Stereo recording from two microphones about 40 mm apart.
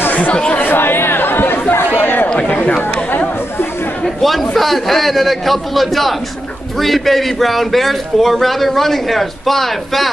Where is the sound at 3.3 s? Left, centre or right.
Left.